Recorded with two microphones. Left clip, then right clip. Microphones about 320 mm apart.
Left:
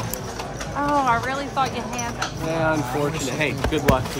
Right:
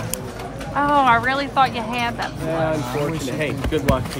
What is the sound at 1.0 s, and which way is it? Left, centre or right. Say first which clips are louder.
Speech: right 6 dB; right.